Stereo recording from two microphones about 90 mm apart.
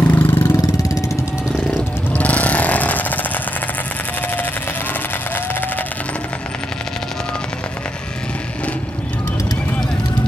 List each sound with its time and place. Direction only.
0.0 s vehicle: 25° left (ahead or behind)
2.1 s jackhammer: 15° left (ahead or behind)